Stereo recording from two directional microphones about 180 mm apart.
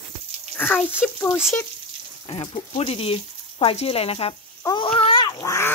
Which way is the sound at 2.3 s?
30° left (ahead or behind).